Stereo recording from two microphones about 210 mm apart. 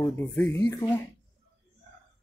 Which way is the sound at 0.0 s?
15° left (ahead or behind).